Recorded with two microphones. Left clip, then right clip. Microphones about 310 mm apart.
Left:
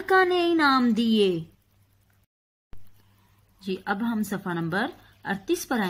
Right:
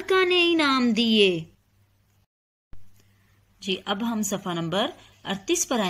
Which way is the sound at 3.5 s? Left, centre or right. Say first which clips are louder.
Right 1 dB; centre.